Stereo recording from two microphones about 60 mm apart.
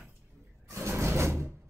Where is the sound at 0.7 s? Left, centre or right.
Right.